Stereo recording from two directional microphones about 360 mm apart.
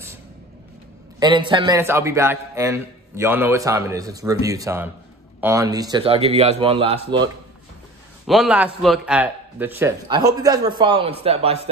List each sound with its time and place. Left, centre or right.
1.2 s a man's voice: centre
8.3 s a man's voice: centre